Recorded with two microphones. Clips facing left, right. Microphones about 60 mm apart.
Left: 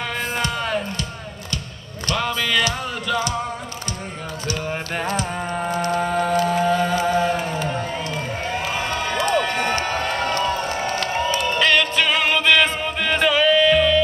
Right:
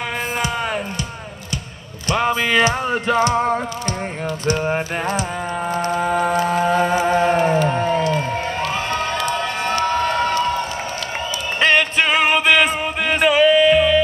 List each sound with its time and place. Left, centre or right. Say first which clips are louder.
0.4 s music: right 1 dB; centre
2.0 s music: right 4 dB; right
4.5 s music: right 6 dB; right
5.1 s music: right 1 dB; centre; by 7.5 s right
7.6 s crowd: right 7 dB; right
11.6 s music: right 4 dB; right